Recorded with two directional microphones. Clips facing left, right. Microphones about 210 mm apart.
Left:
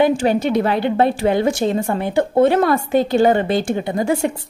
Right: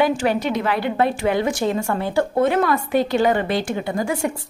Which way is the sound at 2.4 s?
30° left (ahead or behind).